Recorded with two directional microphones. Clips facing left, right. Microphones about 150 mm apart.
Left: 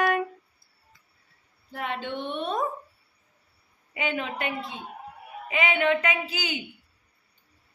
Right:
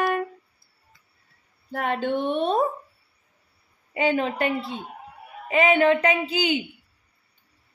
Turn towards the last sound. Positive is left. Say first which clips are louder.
# right 8 dB
turn(degrees=-25)  # may be behind; listen again after turning